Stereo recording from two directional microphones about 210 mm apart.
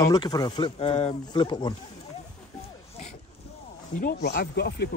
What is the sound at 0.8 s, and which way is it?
Speech, 30° left (ahead or behind).